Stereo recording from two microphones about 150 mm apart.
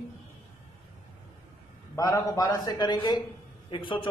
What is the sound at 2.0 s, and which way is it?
A man's voice, 20° left (ahead or behind).